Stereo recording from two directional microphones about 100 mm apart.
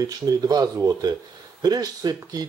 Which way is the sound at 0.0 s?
35° right (ahead or behind).